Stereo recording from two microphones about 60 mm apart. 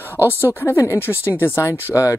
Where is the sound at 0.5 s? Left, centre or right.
Left.